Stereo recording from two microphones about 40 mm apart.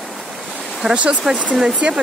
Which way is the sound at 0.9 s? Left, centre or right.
Right.